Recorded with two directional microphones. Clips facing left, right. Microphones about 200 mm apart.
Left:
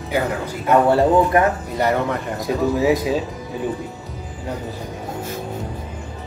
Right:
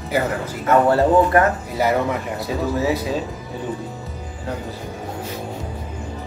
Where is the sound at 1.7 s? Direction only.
5° right (ahead or behind).